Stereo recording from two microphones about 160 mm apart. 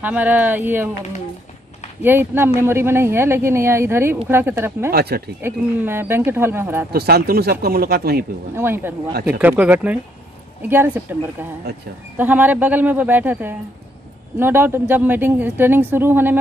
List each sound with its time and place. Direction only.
0.0 s speech: 10° right (ahead or behind)
2.0 s speech: 15° right (ahead or behind)
4.9 s speech: 80° right
5.4 s speech: 15° right (ahead or behind)
6.9 s speech: 75° right (ahead or behind)
8.5 s speech: 15° right (ahead or behind)